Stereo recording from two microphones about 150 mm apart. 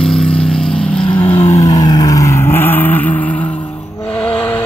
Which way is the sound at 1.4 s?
20° left (ahead or behind).